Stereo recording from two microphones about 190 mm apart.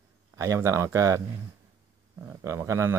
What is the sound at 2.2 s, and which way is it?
Speech, 15° right (ahead or behind).